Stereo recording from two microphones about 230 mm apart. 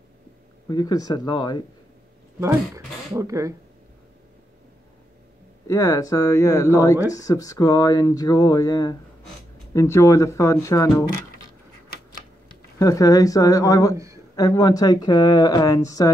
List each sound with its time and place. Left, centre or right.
0.7 s speech: centre
2.4 s speech: centre
5.7 s speech: centre
12.7 s speech: centre